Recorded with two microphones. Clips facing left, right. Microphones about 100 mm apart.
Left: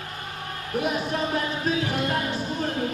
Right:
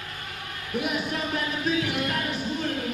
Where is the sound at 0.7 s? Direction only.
35° left (ahead or behind).